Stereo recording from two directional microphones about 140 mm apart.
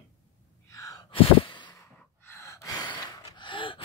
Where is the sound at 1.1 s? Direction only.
35° left (ahead or behind).